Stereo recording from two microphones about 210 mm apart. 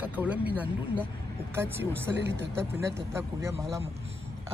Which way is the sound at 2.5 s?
10° right (ahead or behind).